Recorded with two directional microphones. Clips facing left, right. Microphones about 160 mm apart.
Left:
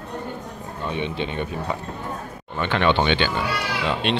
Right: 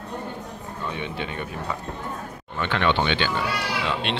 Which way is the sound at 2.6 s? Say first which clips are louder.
Left 3 dB; 20° left (ahead or behind).